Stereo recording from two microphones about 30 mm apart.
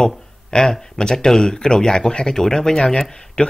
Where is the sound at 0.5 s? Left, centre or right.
Left.